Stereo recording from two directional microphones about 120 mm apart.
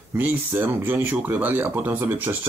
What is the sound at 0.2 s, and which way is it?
Speech, 20° right (ahead or behind).